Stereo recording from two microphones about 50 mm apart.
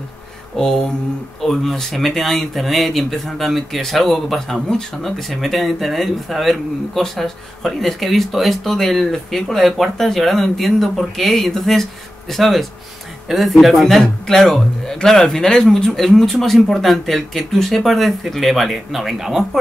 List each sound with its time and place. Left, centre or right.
0.6 s mantra: centre
1.4 s speech: centre